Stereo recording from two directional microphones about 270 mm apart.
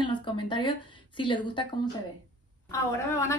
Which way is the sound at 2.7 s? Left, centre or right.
Centre.